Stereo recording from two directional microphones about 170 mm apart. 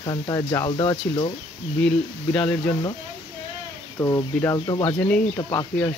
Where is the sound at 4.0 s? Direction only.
20° left (ahead or behind).